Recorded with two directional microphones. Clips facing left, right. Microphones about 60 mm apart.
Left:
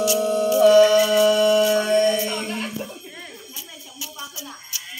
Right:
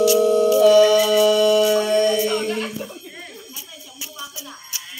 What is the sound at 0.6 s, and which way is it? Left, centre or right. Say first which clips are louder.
Music: left 1 dB; left.